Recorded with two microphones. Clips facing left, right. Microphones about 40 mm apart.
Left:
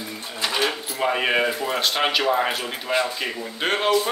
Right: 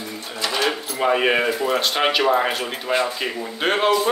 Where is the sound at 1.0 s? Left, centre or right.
Centre.